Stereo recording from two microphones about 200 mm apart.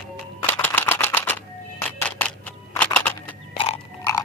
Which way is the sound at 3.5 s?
25° left (ahead or behind).